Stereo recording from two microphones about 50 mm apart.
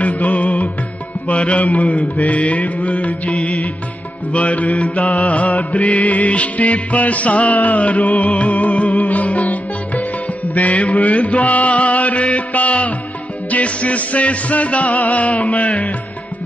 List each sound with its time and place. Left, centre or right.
0.0 s music: left
10.5 s mantra: left
13.5 s music: left